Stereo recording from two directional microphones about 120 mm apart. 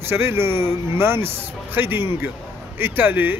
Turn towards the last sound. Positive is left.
turn(degrees=-15)  # may be behind; listen again after turning